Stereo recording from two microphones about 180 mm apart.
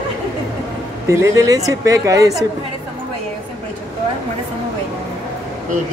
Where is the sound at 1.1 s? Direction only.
20° right (ahead or behind).